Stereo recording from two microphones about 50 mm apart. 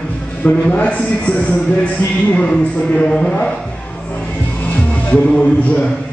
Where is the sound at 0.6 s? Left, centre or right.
Left.